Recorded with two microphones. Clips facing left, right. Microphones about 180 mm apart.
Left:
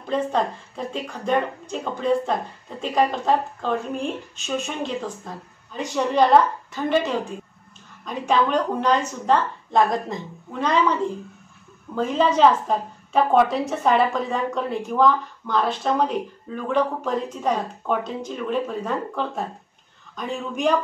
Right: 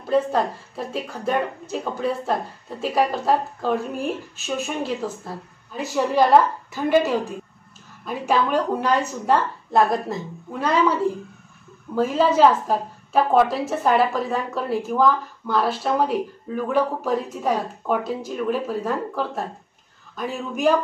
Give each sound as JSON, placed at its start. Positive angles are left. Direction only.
{"t": 0.0, "sound": "a woman's voice", "side_deg": -5}